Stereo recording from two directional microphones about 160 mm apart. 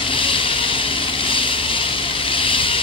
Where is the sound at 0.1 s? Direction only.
35° left (ahead or behind).